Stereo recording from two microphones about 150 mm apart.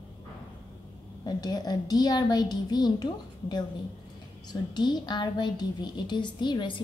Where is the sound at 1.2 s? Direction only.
25° left (ahead or behind).